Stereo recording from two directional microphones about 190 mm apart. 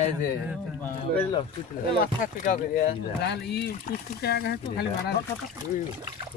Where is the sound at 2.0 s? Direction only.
45° left (ahead or behind).